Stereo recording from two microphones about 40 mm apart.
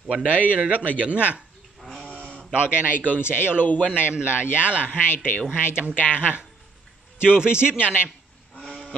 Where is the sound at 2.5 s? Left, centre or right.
Right.